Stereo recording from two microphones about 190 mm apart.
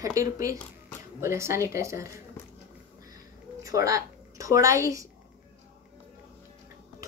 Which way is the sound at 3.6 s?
15° right (ahead or behind).